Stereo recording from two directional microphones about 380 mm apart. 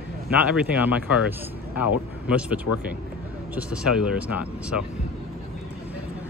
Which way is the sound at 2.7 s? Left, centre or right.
Left.